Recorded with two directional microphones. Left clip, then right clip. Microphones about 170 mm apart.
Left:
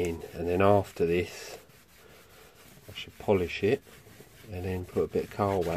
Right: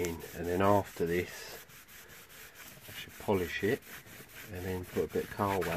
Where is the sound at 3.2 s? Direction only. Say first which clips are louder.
Left 5 dB; 20° left (ahead or behind).